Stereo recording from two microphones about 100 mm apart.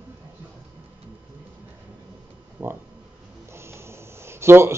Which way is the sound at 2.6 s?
20° right (ahead or behind).